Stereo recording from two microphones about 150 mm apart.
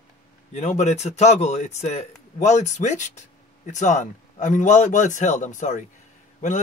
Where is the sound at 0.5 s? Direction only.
50° left (ahead or behind).